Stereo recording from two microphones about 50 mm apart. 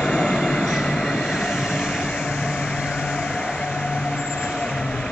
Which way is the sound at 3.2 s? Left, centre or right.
Left.